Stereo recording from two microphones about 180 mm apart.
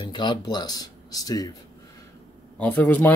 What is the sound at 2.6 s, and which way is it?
Speech, 10° left (ahead or behind).